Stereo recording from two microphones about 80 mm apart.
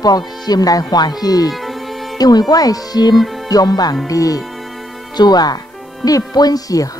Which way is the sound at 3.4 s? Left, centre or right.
Left.